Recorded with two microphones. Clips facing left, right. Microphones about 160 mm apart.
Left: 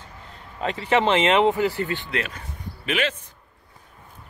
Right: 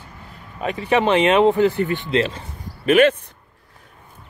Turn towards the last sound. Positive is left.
turn(degrees=-50)  # may be behind; listen again after turning